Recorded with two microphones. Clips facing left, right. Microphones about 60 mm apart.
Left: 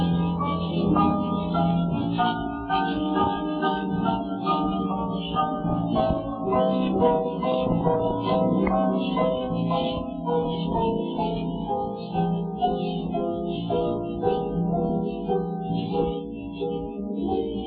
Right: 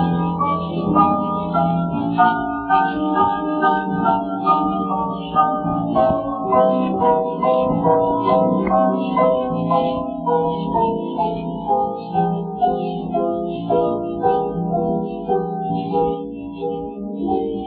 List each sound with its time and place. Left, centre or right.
0.0 s music: right